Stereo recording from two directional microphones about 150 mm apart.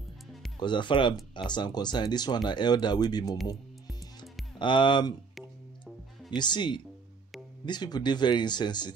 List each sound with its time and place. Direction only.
0.6 s speech: 30° left (ahead or behind)
4.6 s speech: 30° left (ahead or behind)
6.3 s speech: 30° left (ahead or behind)